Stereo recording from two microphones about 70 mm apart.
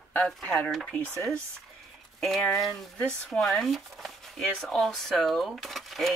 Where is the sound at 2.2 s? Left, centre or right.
Centre.